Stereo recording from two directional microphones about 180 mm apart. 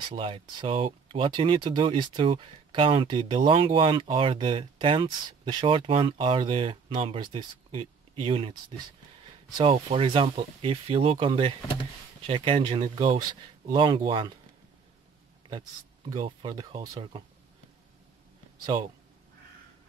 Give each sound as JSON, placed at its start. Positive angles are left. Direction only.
{"t": 0.1, "sound": "speech", "side_deg": -25}
{"t": 16.1, "sound": "speech", "side_deg": -25}
{"t": 18.7, "sound": "speech", "side_deg": -30}